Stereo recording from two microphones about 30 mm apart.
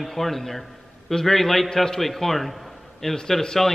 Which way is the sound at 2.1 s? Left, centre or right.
Centre.